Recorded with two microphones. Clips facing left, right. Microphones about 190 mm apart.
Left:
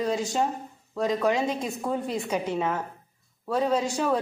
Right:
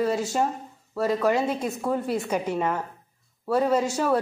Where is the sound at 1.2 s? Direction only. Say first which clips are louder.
Right 2 dB; 5° right (ahead or behind).